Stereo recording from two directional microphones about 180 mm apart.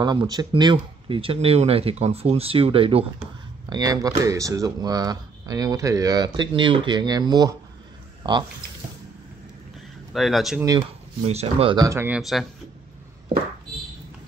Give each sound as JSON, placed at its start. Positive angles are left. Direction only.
{"t": 0.0, "sound": "speech", "side_deg": -25}
{"t": 3.7, "sound": "speech", "side_deg": -20}
{"t": 10.1, "sound": "speech", "side_deg": 0}
{"t": 11.2, "sound": "speech", "side_deg": -35}
{"t": 11.7, "sound": "speech", "side_deg": -15}
{"t": 12.2, "sound": "speech", "side_deg": 0}